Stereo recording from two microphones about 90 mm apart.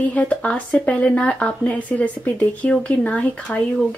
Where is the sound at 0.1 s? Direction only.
15° left (ahead or behind).